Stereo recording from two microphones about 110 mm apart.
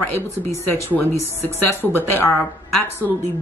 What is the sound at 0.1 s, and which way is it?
Speech, 25° left (ahead or behind).